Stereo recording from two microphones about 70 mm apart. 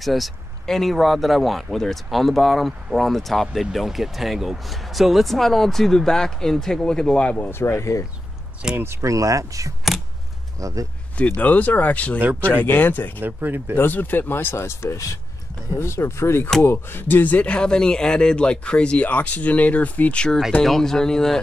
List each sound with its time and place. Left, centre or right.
0.0 s speech: centre
7.4 s speech: left
8.6 s speech: centre
9.0 s speech: right
9.9 s scissors: centre
10.6 s speech: right
11.1 s speech: centre
13.2 s speech: right
13.7 s a man's voice: left; by 21.4 s centre